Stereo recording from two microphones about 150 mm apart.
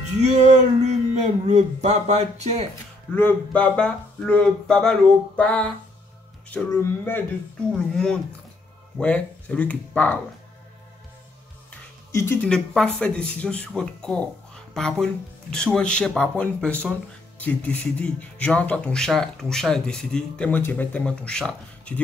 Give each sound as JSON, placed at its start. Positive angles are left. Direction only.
{"t": 0.2, "sound": "speech", "side_deg": -50}
{"t": 3.2, "sound": "speech", "side_deg": 10}
{"t": 11.7, "sound": "music", "side_deg": 15}
{"t": 12.4, "sound": "speech", "side_deg": 5}